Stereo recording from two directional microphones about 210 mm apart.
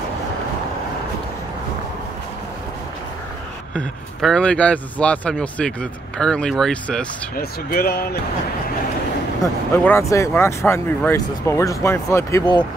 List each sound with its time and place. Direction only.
3.7 s speech: 5° left (ahead or behind)
7.3 s speech: 45° left (ahead or behind)
9.8 s speech: 15° left (ahead or behind)